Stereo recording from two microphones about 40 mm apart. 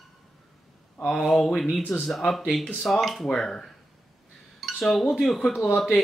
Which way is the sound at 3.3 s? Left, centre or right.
Centre.